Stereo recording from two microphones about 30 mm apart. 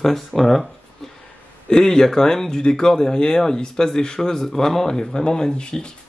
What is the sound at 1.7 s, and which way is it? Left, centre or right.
Speech, left.